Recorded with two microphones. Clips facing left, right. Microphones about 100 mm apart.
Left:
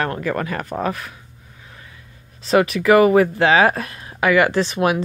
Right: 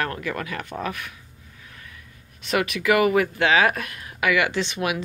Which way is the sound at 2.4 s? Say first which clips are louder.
Left 7 dB; 35° left (ahead or behind).